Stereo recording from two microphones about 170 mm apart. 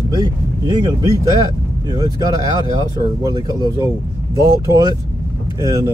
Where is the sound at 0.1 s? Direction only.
25° right (ahead or behind).